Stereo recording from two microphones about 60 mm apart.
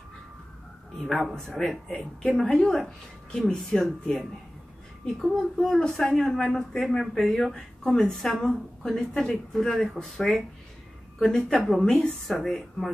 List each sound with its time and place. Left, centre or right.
1.3 s speech: centre
5.2 s speech: centre
11.8 s speech: centre
12.4 s speech: centre